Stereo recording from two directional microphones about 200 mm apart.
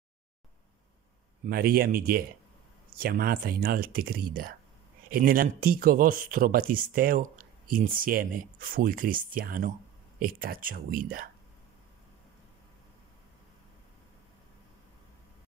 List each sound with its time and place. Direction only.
1.4 s speech: 50° right (ahead or behind)